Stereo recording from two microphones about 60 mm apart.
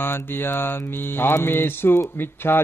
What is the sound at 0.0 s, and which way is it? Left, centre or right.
Mantra, left.